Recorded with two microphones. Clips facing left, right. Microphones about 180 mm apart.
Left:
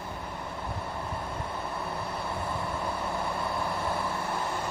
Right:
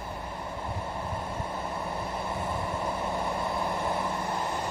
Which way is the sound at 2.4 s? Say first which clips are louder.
Right 1 dB; 15° right (ahead or behind).